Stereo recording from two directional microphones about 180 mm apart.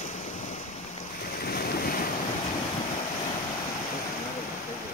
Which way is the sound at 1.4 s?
55° left (ahead or behind).